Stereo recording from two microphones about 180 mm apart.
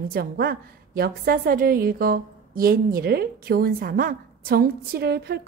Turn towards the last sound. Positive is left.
turn(degrees=-65)  # may be behind; listen again after turning